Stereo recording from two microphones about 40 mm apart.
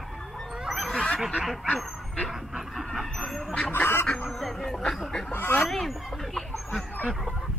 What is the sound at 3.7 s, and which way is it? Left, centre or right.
Speech, left.